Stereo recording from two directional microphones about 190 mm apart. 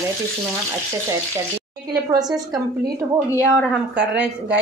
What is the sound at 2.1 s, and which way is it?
A woman's voice, 20° right (ahead or behind).